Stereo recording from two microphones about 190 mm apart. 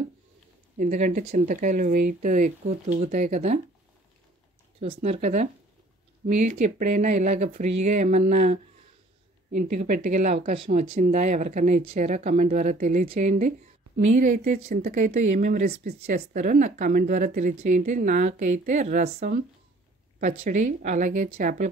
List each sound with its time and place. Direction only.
0.7 s speech: 40° right (ahead or behind)
4.7 s speech: 30° right (ahead or behind)
9.8 s speech: 45° right (ahead or behind)
15.9 s speech: 55° right (ahead or behind)
16.3 s speech: 40° right (ahead or behind)
20.4 s speech: 40° right (ahead or behind)